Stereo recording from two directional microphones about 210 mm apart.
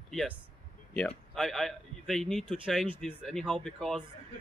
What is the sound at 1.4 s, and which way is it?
Speech, centre (ahead or behind).